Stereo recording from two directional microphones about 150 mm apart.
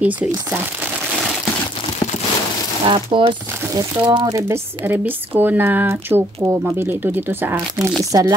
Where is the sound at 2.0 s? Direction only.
25° left (ahead or behind).